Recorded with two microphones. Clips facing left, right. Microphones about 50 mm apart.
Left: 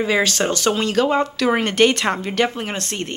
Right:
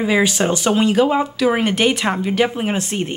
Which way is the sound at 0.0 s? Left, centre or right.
Centre.